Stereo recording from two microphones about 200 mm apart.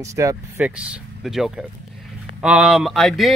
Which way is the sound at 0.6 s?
5° right (ahead or behind).